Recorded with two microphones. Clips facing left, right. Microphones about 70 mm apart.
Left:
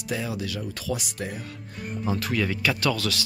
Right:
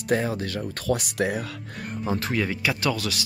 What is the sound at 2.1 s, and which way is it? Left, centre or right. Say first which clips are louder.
Speech: right 1 dB; right.